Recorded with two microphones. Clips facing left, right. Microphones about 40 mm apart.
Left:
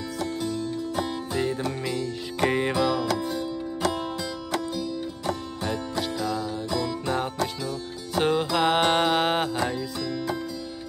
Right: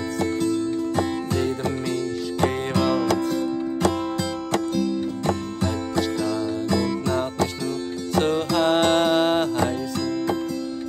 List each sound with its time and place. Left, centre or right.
0.2 s music: right
1.3 s music: centre
4.7 s music: right
5.6 s music: centre